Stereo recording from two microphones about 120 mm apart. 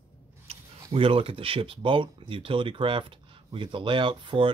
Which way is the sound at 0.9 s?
50° right (ahead or behind).